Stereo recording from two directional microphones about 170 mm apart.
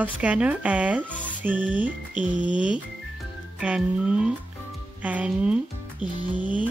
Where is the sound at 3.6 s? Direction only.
5° right (ahead or behind).